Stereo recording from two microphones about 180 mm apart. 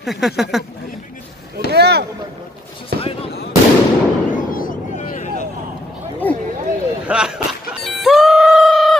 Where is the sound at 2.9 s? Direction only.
60° right (ahead or behind).